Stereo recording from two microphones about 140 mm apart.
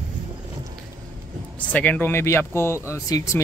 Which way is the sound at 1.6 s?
10° left (ahead or behind).